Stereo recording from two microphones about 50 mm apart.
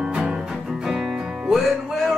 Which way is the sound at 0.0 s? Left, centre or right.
Centre.